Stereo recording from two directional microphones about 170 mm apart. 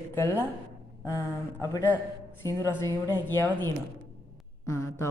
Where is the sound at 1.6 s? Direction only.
15° left (ahead or behind).